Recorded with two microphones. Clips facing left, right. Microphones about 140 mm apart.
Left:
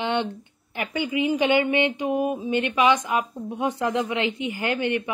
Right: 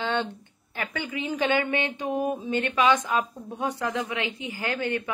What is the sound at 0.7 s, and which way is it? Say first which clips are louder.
A woman's voice: left 6 dB; 15° left (ahead or behind).